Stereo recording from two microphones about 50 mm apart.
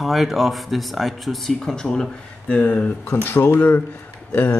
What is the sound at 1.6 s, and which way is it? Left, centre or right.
Speech, centre.